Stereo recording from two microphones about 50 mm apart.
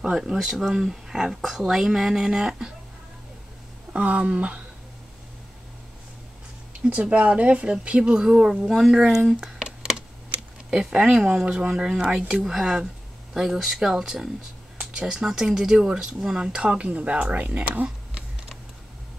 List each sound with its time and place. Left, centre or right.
0.0 s speech: centre
3.9 s speech: right
6.8 s speech: right; by 9.4 s centre
9.4 s a sound: centre
10.7 s speech: centre